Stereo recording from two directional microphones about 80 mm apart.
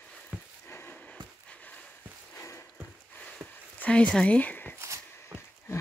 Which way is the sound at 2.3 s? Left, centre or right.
Left.